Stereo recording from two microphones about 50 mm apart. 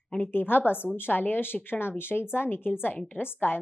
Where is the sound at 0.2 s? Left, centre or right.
Left.